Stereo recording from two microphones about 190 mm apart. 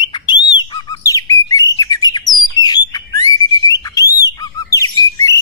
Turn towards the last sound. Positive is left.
turn(degrees=15)  # may be behind; listen again after turning